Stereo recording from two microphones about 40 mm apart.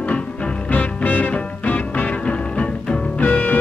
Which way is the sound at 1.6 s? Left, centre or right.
Left.